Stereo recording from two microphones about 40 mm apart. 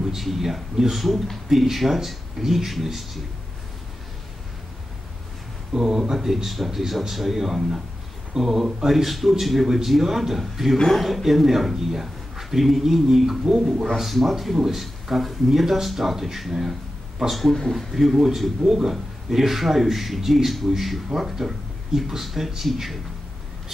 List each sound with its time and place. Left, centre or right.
0.0 s a man's voice: centre
5.7 s a man's voice: centre